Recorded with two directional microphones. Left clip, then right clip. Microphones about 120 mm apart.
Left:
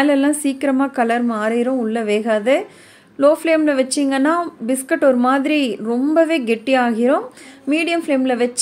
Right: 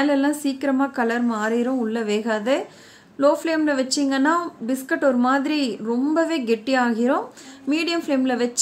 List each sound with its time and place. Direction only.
0.0 s a woman's voice: 25° left (ahead or behind)